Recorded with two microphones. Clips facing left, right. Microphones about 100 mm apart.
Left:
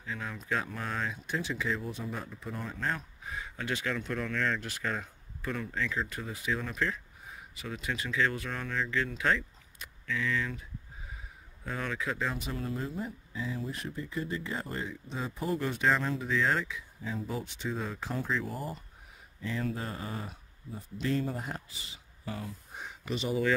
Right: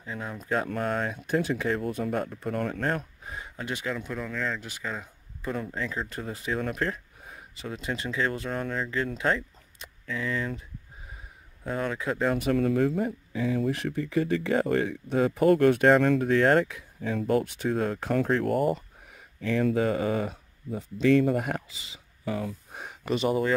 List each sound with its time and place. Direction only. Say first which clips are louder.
0.0 s speech: right 3 dB; 30° right (ahead or behind)
0.7 s speech: right 7 dB; 45° right (ahead or behind)
3.3 s a sound: right 1 dB; 35° right (ahead or behind)
3.6 s speech: right 1 dB; 20° right (ahead or behind)
3.9 s speech: right 1 dB; 5° right (ahead or behind)
5.4 s speech: right 3 dB; 30° right (ahead or behind); by 7.3 s 45° right (ahead or behind)
7.5 s speech: right 3 dB; 35° right (ahead or behind)
11.6 s speech: right 5 dB; 40° right (ahead or behind); by 18.8 s 65° right (ahead or behind)
19.4 s speech: right 10 dB; 85° right
22.8 s speech: right 7 dB; 55° right (ahead or behind)